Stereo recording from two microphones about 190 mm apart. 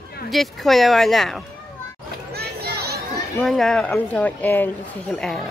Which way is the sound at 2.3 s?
55° right (ahead or behind).